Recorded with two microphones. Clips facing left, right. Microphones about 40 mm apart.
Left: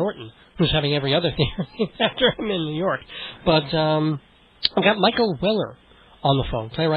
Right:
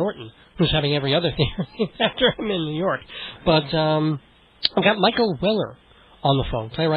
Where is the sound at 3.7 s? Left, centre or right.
Centre.